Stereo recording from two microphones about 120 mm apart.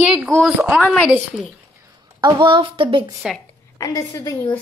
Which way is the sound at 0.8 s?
15° left (ahead or behind).